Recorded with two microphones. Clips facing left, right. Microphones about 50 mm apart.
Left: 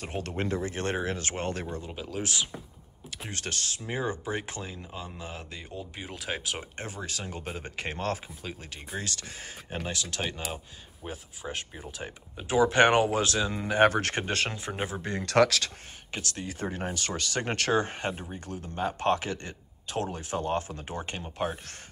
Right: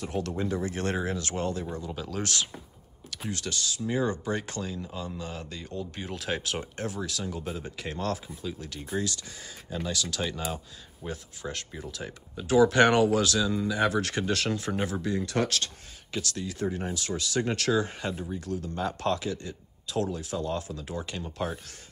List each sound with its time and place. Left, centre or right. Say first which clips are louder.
0.0 s speech: right 2 dB; left
2.0 s speech: even; centre
3.3 s speech: right 2 dB; left; by 6.7 s centre
6.8 s speech: right 4 dB; left
7.1 s speech: right 3 dB; left
7.9 s speech: right 1 dB; left
9.0 s speech: right 3 dB; left
10.1 s speech: right 1 dB; left
10.5 s speech: right 2 dB; centre; by 13.7 s left
13.7 s speech: left 3 dB; left
14.7 s speech: right 3 dB; left
15.0 s speech: right 3 dB; left
16.1 s speech: right 3 dB; left
16.6 s speech: right 1 dB; left